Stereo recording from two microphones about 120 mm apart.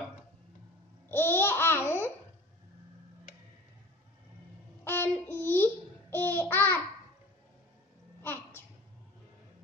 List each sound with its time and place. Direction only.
1.0 s laughter: 20° left (ahead or behind)
4.8 s babbling: 20° left (ahead or behind)
8.2 s a sound: 20° left (ahead or behind)